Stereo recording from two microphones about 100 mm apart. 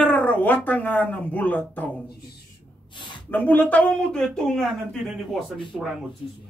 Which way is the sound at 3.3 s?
15° left (ahead or behind).